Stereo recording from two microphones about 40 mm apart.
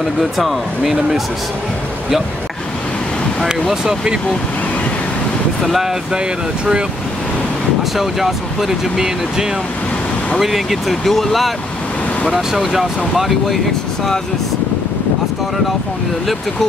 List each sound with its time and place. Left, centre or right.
0.2 s speech: centre
3.8 s speech: centre
5.6 s speech: centre
6.1 s speech: right
8.0 s speech: centre
12.4 s speech: centre